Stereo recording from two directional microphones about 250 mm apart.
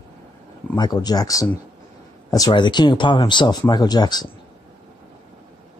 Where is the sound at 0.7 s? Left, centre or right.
Centre.